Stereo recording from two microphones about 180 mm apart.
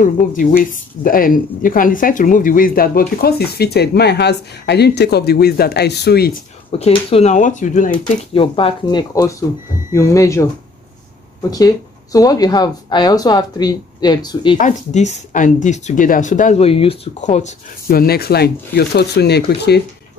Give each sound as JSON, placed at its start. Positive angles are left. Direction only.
{"t": 0.0, "sound": "speech", "side_deg": 45}
{"t": 6.8, "sound": "speech", "side_deg": 35}
{"t": 8.3, "sound": "speech", "side_deg": 30}
{"t": 9.1, "sound": "speech", "side_deg": 20}
{"t": 11.5, "sound": "speech", "side_deg": 20}
{"t": 14.6, "sound": "speech", "side_deg": 40}
{"t": 17.9, "sound": "speech", "side_deg": 60}